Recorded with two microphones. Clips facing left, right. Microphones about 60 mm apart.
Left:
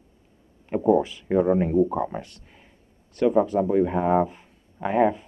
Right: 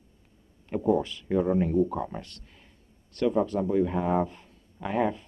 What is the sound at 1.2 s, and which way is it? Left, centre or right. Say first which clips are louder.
Speech: left 4 dB; left.